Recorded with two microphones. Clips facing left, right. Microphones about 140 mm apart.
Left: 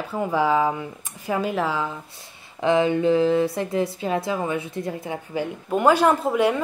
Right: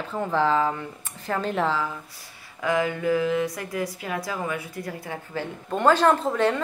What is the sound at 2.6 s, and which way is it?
A woman's voice, 25° left (ahead or behind).